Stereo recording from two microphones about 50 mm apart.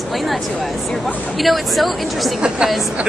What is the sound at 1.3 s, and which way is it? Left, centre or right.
Speech, centre.